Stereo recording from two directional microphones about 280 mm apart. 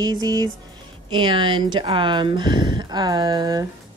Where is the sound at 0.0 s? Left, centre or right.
Centre.